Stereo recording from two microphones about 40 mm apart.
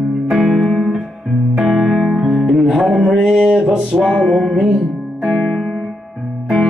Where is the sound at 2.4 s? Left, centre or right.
Centre.